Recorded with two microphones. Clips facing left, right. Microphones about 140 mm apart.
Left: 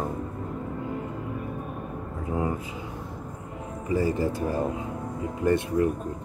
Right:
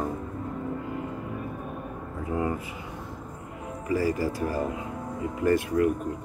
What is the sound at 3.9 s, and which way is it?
Speech, 25° left (ahead or behind).